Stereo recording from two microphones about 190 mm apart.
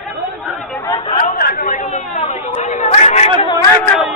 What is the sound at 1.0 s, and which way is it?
Chatter, 30° left (ahead or behind).